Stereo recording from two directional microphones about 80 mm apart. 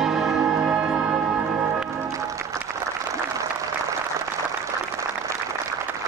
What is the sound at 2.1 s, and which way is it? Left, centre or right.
Music, right.